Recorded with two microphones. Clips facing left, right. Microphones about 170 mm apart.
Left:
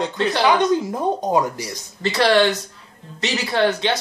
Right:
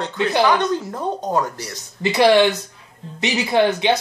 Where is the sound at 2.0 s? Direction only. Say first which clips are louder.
Right 3 dB; 15° right (ahead or behind).